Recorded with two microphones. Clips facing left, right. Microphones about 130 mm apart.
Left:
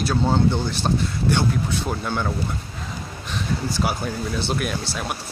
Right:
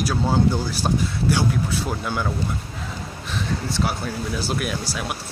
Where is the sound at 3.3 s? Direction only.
Centre (ahead or behind).